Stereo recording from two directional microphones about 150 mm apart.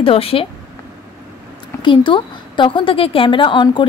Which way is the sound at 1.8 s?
35° left (ahead or behind).